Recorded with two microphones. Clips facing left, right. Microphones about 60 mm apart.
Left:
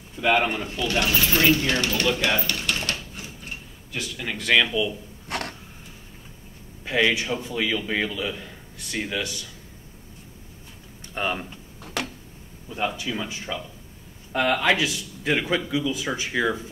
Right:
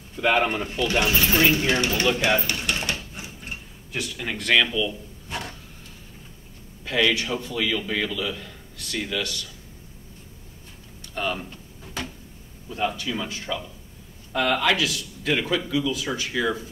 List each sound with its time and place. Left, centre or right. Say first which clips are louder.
0.2 s speech: even; centre
2.5 s a sound: right 1 dB; centre
4.0 s speech: even; centre
5.3 s a sound: left 3 dB; left
6.8 s a man's voice: even; left
11.1 s speech: left 1 dB; left
11.8 s a sound: left 3 dB; left
12.8 s speech: right 1 dB; centre
14.3 s a man's voice: left 1 dB; left